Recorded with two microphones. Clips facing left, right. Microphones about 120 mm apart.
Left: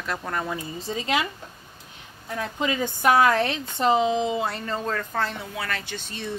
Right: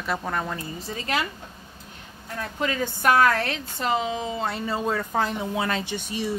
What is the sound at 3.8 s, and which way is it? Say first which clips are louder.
Speech: left 5 dB; 25° left (ahead or behind).